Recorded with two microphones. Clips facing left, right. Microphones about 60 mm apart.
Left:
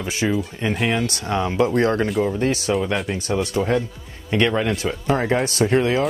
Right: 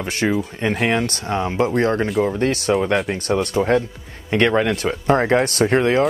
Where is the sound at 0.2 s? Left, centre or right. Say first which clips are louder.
Right 2 dB; centre.